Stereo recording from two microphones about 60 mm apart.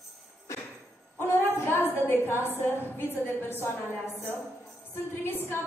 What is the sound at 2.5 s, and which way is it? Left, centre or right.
A woman's voice, left.